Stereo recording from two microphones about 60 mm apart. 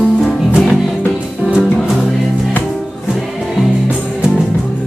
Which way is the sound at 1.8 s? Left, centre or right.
Centre.